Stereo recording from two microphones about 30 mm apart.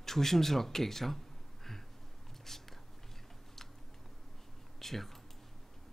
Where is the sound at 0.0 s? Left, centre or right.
Centre.